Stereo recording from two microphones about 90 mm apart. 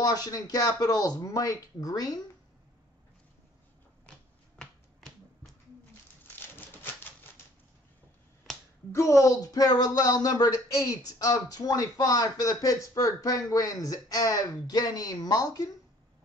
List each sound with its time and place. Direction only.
0.0 s speech: 45° left (ahead or behind)
4.6 s finger snapping: 5° left (ahead or behind)
6.2 s typewriter: 20° left (ahead or behind)
8.9 s speech: 35° left (ahead or behind)